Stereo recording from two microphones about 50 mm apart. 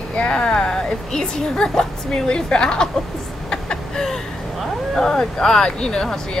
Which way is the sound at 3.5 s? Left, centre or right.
Centre.